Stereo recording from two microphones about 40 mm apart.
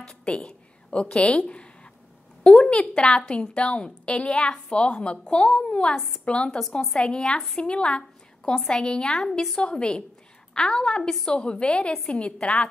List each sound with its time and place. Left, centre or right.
0.0 s a woman's voice: left
0.4 s a sound: centre
1.0 s a woman's voice: left; by 9.6 s centre
9.6 s a woman's voice: left